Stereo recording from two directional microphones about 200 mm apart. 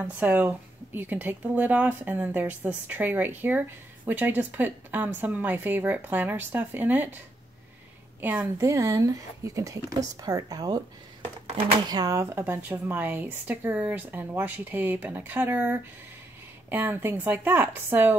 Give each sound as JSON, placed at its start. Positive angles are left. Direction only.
{"t": 0.0, "sound": "speech", "side_deg": -10}
{"t": 8.2, "sound": "speech", "side_deg": -10}